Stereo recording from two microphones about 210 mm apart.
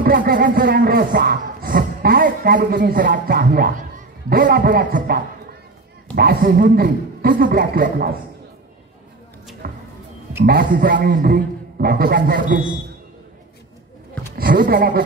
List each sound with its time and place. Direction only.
0.0 s music: 45° right (ahead or behind)
9.6 s music: 45° right (ahead or behind)
10.4 s a man's voice: 45° right (ahead or behind)
11.1 s music: 50° right (ahead or behind)
14.3 s music: 45° right (ahead or behind)